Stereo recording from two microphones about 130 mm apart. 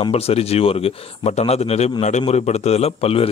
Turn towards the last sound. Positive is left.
turn(degrees=50)  # may be behind; listen again after turning